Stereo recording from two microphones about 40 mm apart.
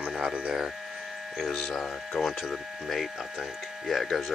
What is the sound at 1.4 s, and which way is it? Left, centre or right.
Speech, centre.